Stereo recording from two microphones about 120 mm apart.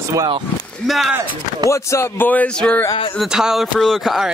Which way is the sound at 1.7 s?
20° left (ahead or behind).